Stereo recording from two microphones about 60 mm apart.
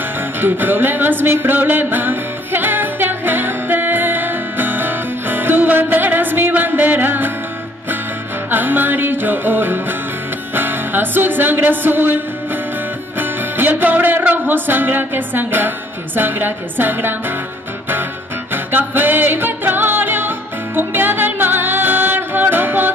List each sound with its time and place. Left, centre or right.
0.4 s music: right
8.5 s music: right
13.2 s music: right
18.5 s music: right